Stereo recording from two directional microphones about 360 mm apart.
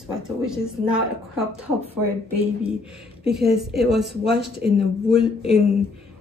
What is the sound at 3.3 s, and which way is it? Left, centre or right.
Speech, centre.